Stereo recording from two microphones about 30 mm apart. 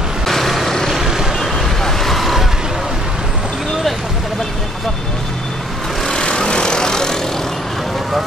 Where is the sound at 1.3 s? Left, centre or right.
Centre.